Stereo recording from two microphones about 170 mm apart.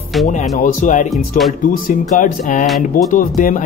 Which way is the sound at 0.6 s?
50° left (ahead or behind).